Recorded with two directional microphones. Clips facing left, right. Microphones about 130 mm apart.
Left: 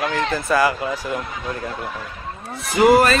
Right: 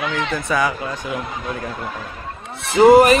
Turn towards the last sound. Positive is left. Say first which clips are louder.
# right 4 dB
turn(degrees=-25)  # may be behind; listen again after turning